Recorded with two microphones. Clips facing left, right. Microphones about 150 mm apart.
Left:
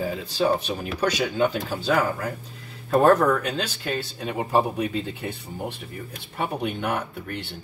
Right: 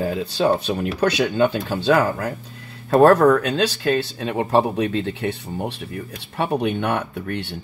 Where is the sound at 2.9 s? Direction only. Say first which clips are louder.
Right 5 dB; 85° right.